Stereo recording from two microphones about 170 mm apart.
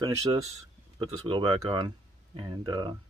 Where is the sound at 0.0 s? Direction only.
25° right (ahead or behind).